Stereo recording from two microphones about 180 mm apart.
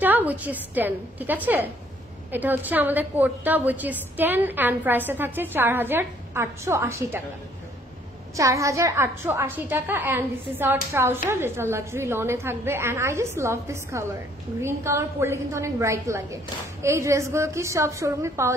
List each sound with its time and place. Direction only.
0.0 s a woman's voice: 10° right (ahead or behind)
8.4 s a woman's voice: 15° right (ahead or behind)